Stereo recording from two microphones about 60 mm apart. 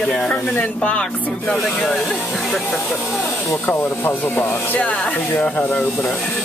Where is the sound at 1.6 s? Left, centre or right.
Centre.